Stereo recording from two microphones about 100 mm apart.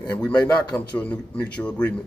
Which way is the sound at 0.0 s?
10° left (ahead or behind).